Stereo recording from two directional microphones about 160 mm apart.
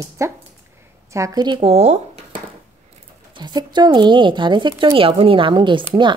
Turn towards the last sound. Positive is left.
turn(degrees=-30)  # may be behind; listen again after turning